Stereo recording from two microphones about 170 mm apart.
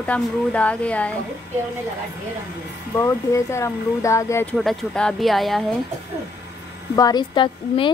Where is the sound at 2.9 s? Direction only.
15° left (ahead or behind).